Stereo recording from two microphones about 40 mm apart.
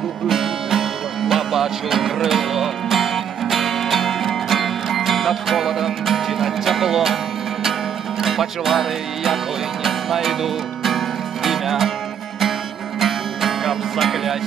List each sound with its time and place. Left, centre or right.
0.3 s music: centre
8.2 s music: centre
13.0 s music: centre